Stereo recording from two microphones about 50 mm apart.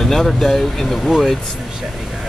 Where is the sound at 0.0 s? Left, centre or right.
Centre.